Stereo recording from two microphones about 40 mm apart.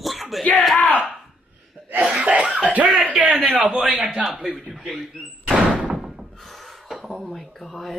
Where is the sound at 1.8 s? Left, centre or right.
Right.